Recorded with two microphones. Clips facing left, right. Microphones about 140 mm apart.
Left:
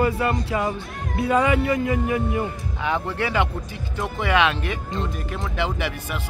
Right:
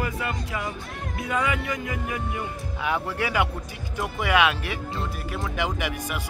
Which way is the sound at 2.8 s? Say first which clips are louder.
Left 2 dB; 10° right (ahead or behind).